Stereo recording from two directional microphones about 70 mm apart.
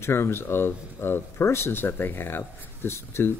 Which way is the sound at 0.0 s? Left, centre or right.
Left.